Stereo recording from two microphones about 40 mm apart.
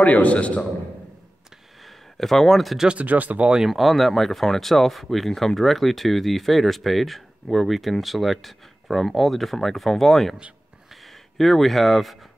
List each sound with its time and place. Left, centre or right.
0.0 s a man's voice: left
1.9 s speech: centre
3.0 s speech: right
3.6 s speech: centre
10.9 s a sound: centre